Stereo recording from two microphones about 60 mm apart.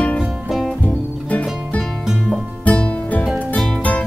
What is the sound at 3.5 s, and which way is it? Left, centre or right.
Music, centre.